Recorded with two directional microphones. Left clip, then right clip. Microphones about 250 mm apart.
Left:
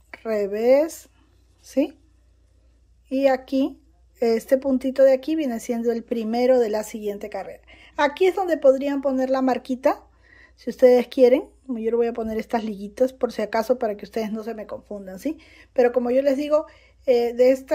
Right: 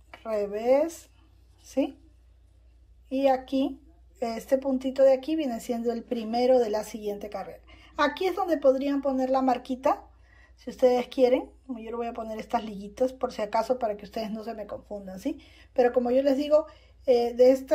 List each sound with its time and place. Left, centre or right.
0.1 s speech: centre
3.1 s speech: centre
10.2 s a sound: centre
11.1 s speech: centre